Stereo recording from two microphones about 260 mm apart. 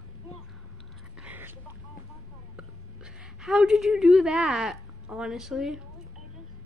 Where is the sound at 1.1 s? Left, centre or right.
Centre.